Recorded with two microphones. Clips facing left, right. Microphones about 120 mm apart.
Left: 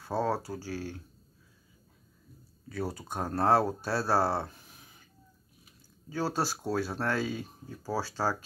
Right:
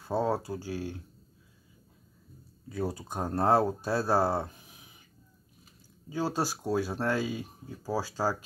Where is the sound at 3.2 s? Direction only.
15° right (ahead or behind).